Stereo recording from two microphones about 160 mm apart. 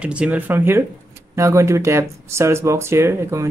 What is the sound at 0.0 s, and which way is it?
Speech, 5° right (ahead or behind).